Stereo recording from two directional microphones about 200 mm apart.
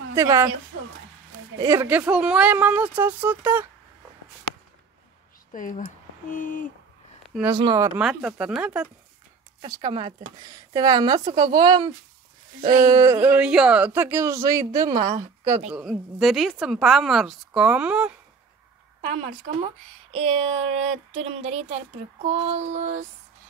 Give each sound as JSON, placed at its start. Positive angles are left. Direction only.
{"t": 0.1, "sound": "a woman's voice", "side_deg": -15}
{"t": 1.6, "sound": "speech", "side_deg": -15}
{"t": 5.5, "sound": "speech", "side_deg": 40}
{"t": 6.2, "sound": "a sound", "side_deg": 40}
{"t": 7.4, "sound": "speech", "side_deg": -20}
{"t": 7.9, "sound": "speech", "side_deg": 0}
{"t": 9.6, "sound": "speech", "side_deg": -25}
{"t": 15.7, "sound": "speech", "side_deg": 0}
{"t": 18.9, "sound": "a sound", "side_deg": -30}